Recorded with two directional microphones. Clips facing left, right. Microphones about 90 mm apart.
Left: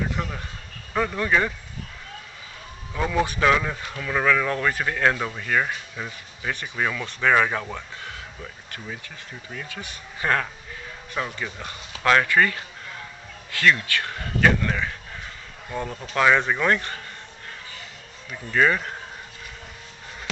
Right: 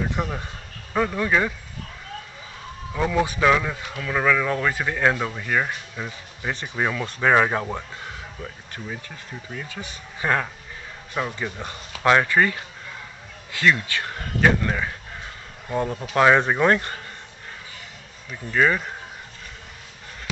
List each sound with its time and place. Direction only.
0.1 s speech: 20° right (ahead or behind)
0.9 s a man's voice: 5° right (ahead or behind)
2.9 s a man's voice: 5° right (ahead or behind)
6.7 s a man's voice: 15° right (ahead or behind)
10.2 s a man's voice: 10° right (ahead or behind)
18.5 s speech: 5° right (ahead or behind)